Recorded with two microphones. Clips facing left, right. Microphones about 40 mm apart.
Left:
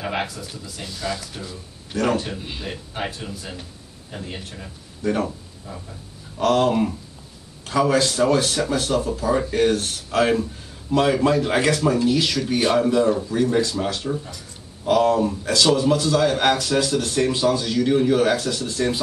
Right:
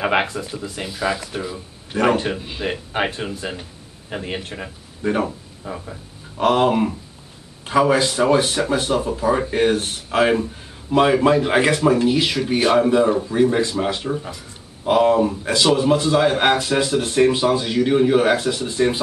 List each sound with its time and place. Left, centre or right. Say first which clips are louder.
0.0 s speech: right 7 dB; right
0.8 s speech: right 5 dB; right
5.0 s speech: right 2 dB; centre
5.7 s a sound: right 6 dB; right
6.4 s speech: right 2 dB; right